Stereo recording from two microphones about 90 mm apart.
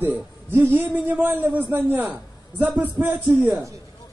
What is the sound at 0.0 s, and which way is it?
A man's voice, 20° right (ahead or behind).